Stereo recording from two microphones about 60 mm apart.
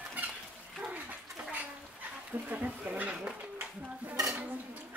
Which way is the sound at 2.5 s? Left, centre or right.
Right.